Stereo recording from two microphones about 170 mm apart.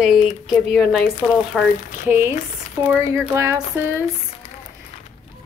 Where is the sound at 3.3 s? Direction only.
15° right (ahead or behind).